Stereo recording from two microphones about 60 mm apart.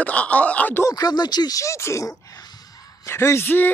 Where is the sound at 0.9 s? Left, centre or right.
Left.